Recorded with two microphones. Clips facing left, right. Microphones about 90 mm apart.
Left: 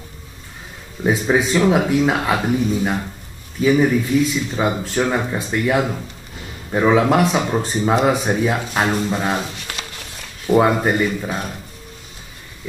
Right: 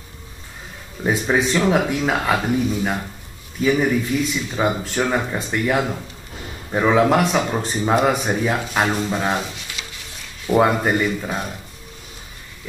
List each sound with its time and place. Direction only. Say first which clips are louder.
1.0 s a man's voice: left 2 dB; centre (ahead or behind)
9.7 s a sound: left 4 dB; 55° left (ahead or behind)
10.5 s speech: left 2 dB; 5° left (ahead or behind)